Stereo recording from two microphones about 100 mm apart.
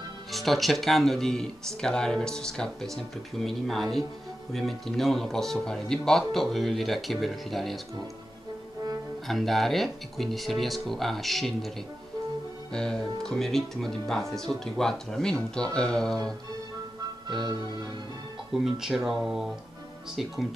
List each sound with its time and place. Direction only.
0.3 s speech: centre (ahead or behind)
9.3 s speech: centre (ahead or behind)
12.7 s speech: 5° left (ahead or behind)
17.5 s music: 45° right (ahead or behind)
18.5 s speech: 5° right (ahead or behind)